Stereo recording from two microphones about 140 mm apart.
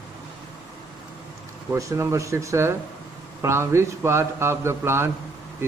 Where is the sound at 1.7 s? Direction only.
20° right (ahead or behind).